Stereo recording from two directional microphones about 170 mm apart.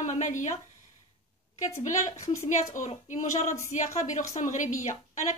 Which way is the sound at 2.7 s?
45° left (ahead or behind).